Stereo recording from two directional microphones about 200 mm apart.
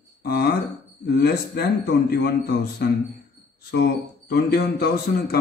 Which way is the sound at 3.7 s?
55° left (ahead or behind).